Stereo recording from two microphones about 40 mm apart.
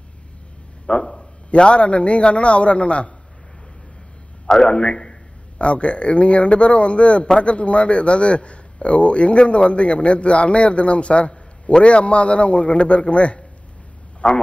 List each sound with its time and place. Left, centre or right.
0.8 s a man's voice: centre
4.5 s a man's voice: left
5.6 s a man's voice: left